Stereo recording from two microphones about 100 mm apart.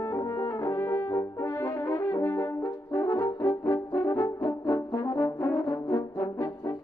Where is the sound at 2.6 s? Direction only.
40° left (ahead or behind).